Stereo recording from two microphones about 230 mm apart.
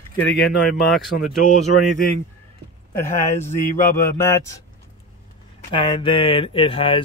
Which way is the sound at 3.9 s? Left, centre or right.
Centre.